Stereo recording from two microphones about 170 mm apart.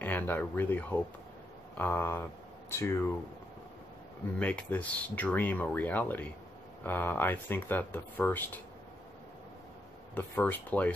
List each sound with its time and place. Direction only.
0.0 s speech: 10° left (ahead or behind)
4.4 s speech: 10° left (ahead or behind)
10.1 s speech: 10° left (ahead or behind)